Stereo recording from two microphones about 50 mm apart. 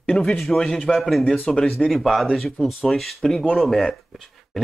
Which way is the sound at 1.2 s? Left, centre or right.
Centre.